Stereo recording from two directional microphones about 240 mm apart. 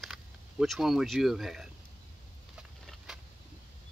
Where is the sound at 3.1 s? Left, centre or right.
Centre.